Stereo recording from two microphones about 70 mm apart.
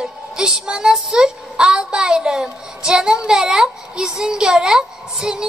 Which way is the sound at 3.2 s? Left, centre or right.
Centre.